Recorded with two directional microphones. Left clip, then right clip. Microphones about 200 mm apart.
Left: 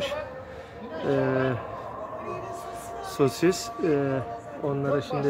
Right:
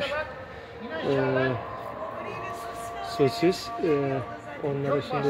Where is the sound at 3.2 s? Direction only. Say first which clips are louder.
Even; 10° left (ahead or behind).